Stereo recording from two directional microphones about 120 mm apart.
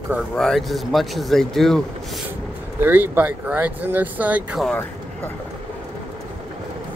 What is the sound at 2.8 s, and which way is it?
Speech, 15° right (ahead or behind).